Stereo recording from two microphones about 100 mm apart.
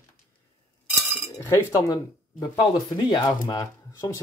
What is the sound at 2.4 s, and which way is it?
Speech, 45° left (ahead or behind).